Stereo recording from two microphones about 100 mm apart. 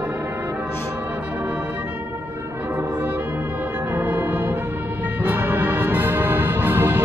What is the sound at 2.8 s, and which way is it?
Brass instrument, 15° right (ahead or behind).